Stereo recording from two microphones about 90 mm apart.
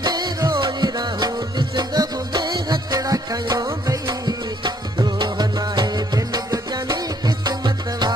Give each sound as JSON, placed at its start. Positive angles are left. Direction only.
{"t": 0.0, "sound": "music", "side_deg": -50}